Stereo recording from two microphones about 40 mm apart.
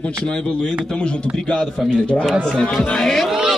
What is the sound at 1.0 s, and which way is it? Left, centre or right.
A man's voice, left.